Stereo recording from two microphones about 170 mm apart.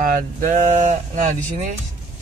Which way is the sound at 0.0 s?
50° right (ahead or behind).